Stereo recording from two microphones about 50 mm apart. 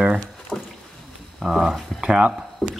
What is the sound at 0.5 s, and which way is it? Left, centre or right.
Rowboat, left.